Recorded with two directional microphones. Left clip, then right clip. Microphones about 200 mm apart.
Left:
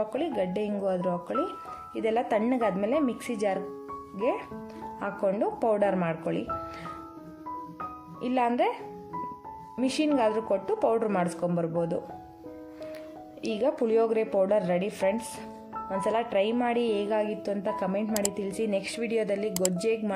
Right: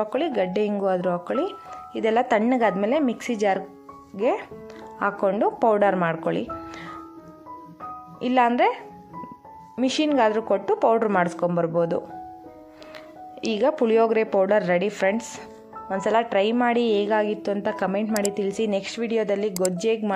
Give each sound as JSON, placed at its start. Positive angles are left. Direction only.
{"t": 0.0, "sound": "a woman's voice", "side_deg": -10}
{"t": 8.2, "sound": "a woman's voice", "side_deg": -10}
{"t": 9.8, "sound": "a woman's voice", "side_deg": -10}
{"t": 13.4, "sound": "a woman's voice", "side_deg": -10}
{"t": 18.0, "sound": "speech", "side_deg": 0}
{"t": 18.3, "sound": "a woman's voice", "side_deg": -10}